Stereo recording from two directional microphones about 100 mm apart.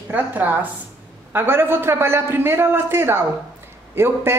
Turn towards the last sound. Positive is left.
turn(degrees=-25)  # may be behind; listen again after turning